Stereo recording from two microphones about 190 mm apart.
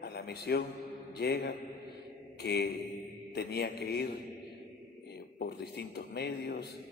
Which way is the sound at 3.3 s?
55° left (ahead or behind).